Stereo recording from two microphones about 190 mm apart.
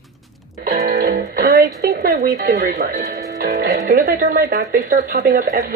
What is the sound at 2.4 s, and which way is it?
Speech, 55° right (ahead or behind).